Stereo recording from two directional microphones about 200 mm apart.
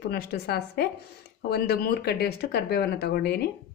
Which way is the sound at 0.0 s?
50° left (ahead or behind).